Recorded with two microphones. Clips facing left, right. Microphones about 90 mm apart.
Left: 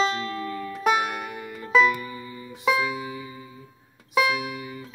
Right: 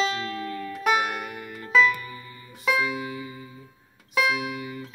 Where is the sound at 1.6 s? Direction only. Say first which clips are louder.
Left 1 dB; 5° left (ahead or behind).